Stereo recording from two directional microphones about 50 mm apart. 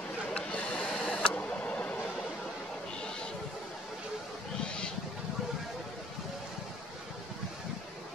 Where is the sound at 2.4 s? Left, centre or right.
Centre.